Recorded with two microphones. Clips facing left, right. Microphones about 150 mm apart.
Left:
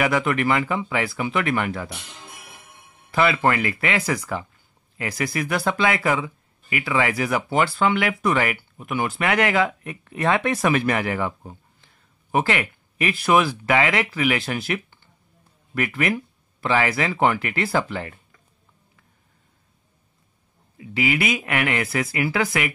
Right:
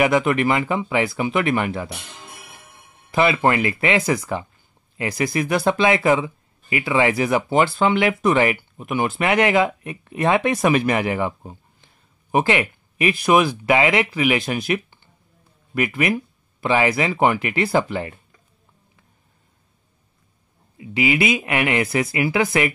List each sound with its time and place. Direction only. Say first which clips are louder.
0.0 s speech: right 4 dB; 20° right (ahead or behind)
3.1 s speech: right 2 dB; 20° right (ahead or behind)
20.7 s speech: right 3 dB; 20° right (ahead or behind)